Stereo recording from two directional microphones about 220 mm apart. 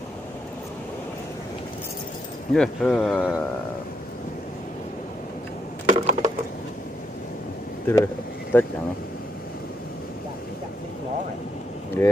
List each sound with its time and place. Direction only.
2.5 s speech: 5° left (ahead or behind)
5.9 s wood: 30° right (ahead or behind)
7.8 s speech: 10° left (ahead or behind)
12.0 s speech: 10° left (ahead or behind)